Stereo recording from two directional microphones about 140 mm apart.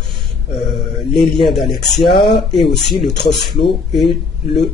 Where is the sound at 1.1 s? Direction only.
Centre (ahead or behind).